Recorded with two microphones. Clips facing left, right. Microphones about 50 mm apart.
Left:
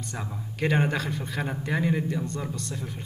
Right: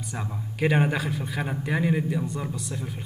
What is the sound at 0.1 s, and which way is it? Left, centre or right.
Speech, centre.